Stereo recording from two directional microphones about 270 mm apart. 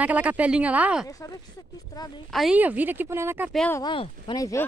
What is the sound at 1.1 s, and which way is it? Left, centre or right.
Speech, centre.